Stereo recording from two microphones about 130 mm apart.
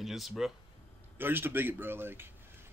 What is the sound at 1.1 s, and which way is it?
Speech, 15° right (ahead or behind).